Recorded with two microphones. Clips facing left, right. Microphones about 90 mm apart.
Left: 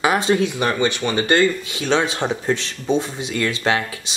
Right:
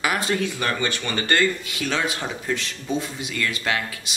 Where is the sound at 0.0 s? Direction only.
25° left (ahead or behind).